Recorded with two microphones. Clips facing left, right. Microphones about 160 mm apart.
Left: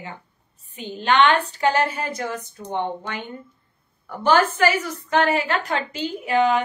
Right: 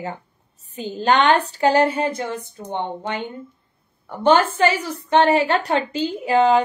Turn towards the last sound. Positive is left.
turn(degrees=-35)  # may be behind; listen again after turning